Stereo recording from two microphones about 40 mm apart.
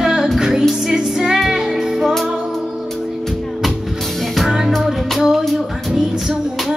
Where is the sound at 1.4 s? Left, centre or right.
Centre.